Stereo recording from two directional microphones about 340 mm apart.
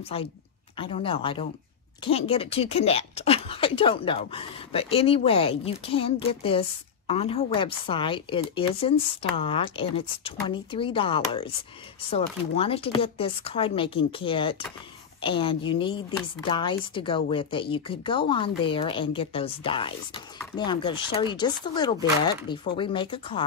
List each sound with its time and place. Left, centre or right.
0.1 s speech: centre